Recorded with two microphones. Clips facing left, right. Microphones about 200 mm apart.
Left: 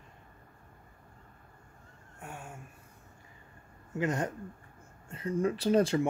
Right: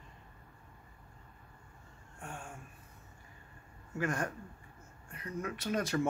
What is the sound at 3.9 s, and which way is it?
Speech, 20° left (ahead or behind).